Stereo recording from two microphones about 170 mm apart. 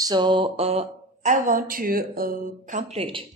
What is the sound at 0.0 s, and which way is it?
Speech, 25° right (ahead or behind).